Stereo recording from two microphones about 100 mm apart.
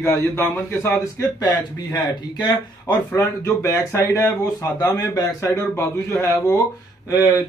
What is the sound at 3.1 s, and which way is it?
Speech, 25° left (ahead or behind).